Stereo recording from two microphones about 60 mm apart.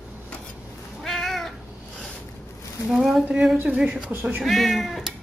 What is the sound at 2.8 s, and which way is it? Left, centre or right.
A woman's voice, centre.